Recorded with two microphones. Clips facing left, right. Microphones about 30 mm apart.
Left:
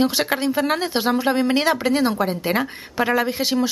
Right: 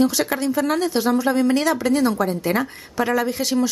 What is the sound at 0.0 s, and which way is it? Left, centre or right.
A woman's voice, left.